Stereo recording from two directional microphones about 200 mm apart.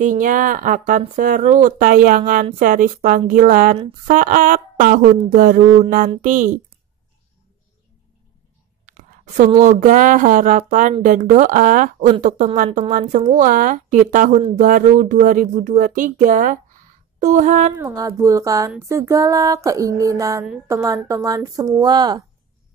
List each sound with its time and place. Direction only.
0.0 s a woman's voice: 40° right (ahead or behind)
8.8 s a woman's voice: 40° right (ahead or behind)
17.7 s a sound: 20° right (ahead or behind)